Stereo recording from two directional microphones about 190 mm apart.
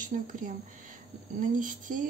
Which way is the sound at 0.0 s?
45° right (ahead or behind).